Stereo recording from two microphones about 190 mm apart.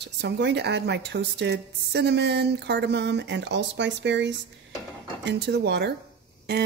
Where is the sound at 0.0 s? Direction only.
65° right (ahead or behind).